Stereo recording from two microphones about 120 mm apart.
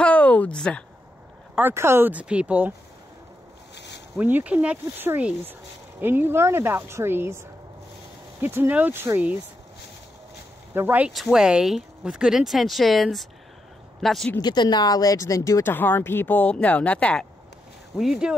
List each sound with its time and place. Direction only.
0.0 s a sound: 10° left (ahead or behind)
1.6 s speech: 20° right (ahead or behind)
4.2 s a woman's voice: 15° right (ahead or behind)
8.4 s speech: 20° right (ahead or behind)
10.7 s speech: 15° right (ahead or behind)
11.1 s speech: 5° right (ahead or behind)
14.4 s speech: 35° left (ahead or behind); by 17.3 s 10° left (ahead or behind)
17.9 s speech: 5° right (ahead or behind)